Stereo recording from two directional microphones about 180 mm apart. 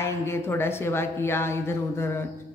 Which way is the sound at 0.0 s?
15° left (ahead or behind).